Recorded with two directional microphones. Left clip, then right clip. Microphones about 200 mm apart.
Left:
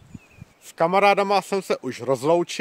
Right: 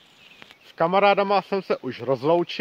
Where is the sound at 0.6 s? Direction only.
10° left (ahead or behind).